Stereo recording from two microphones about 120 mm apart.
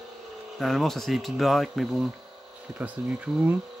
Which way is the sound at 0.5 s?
Centre (ahead or behind).